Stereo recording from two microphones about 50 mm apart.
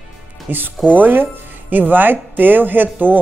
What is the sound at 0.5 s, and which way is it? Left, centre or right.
Speech, right.